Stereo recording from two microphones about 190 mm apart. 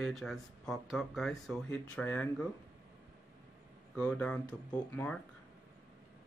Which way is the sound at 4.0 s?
5° left (ahead or behind).